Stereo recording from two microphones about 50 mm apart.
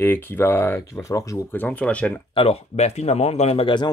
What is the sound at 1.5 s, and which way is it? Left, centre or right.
Speech, left.